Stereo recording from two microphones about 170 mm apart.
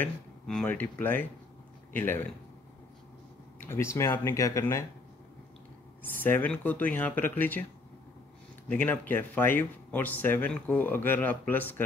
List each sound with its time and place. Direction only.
0.0 s speech: 5° left (ahead or behind)
3.5 s speech: 15° left (ahead or behind)
6.0 s speech: 10° left (ahead or behind)
8.6 s speech: 10° left (ahead or behind)